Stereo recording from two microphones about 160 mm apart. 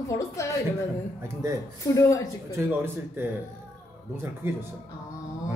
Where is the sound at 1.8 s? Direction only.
20° left (ahead or behind).